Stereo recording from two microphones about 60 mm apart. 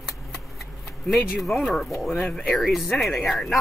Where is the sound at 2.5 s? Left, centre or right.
Centre.